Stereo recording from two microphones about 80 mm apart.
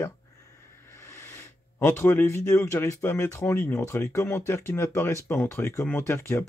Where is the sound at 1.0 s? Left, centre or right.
Left.